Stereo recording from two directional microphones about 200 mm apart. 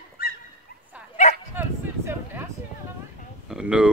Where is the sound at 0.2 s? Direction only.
45° left (ahead or behind).